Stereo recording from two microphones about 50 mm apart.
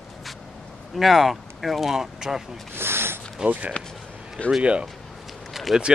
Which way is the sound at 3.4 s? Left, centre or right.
Right.